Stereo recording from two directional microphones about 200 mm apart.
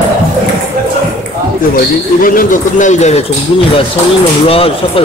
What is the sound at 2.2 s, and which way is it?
Speech, 40° left (ahead or behind).